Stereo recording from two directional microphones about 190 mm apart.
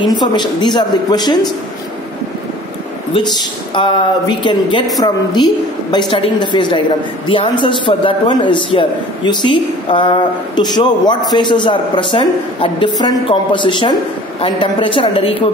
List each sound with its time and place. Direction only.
0.0 s a man's voice: 20° left (ahead or behind)
3.8 s a man's voice: 25° left (ahead or behind)